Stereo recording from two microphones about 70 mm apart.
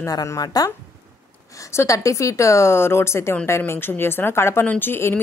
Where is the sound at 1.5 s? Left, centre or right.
Left.